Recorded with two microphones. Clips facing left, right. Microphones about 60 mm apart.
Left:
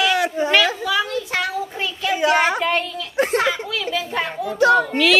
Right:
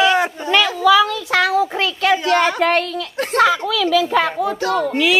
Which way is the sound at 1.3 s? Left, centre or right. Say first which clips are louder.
Right 10 dB; right.